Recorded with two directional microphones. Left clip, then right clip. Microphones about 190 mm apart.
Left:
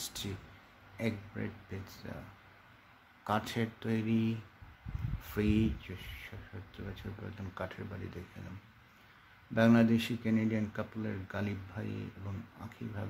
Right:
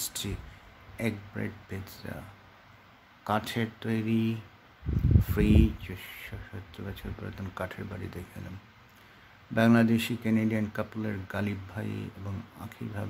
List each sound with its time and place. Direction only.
0.0 s a sound: 15° right (ahead or behind)
0.9 s speech: 15° right (ahead or behind)
3.3 s speech: 10° right (ahead or behind)
9.5 s speech: 15° right (ahead or behind)